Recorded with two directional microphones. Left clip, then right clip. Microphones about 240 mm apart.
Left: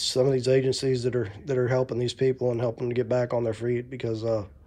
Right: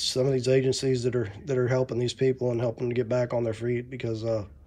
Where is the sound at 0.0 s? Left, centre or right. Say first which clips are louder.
Left 2 dB; centre.